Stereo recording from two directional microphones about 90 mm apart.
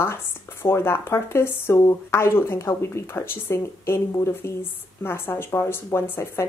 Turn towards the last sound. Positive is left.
turn(degrees=30)  # may be behind; listen again after turning